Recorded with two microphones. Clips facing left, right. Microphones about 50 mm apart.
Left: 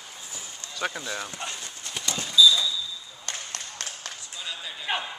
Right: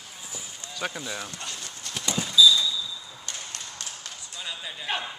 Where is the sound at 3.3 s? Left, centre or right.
Left.